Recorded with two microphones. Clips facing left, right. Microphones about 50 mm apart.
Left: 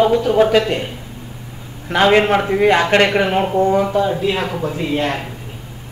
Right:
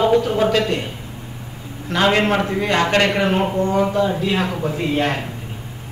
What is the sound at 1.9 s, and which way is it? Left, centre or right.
A man's voice, left.